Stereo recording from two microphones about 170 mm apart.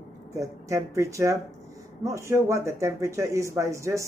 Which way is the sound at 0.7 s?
15° right (ahead or behind).